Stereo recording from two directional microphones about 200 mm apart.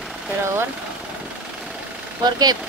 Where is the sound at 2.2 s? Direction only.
20° right (ahead or behind).